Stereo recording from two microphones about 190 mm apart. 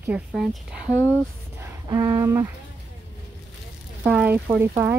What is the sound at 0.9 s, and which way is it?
Speech, 10° left (ahead or behind).